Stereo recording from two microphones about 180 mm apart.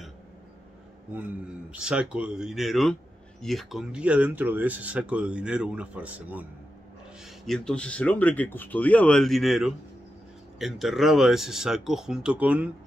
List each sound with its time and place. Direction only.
1.7 s speech: 5° right (ahead or behind)
7.4 s speech: 5° left (ahead or behind)